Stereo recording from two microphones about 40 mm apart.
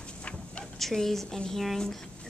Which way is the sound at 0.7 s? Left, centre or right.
Centre.